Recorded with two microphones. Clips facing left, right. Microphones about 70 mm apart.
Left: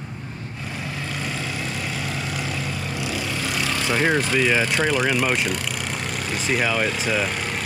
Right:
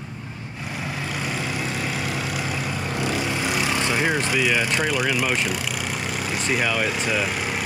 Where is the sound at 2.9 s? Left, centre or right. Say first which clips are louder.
Right 5 dB; right.